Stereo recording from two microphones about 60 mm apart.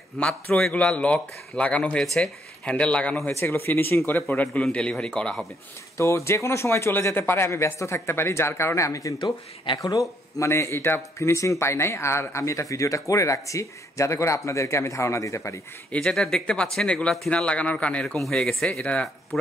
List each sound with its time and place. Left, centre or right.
0.2 s speech: centre
3.3 s a man's voice: left
4.7 s speech: centre
5.9 s speech: left
11.0 s speech: left
16.0 s speech: centre
18.1 s speech: centre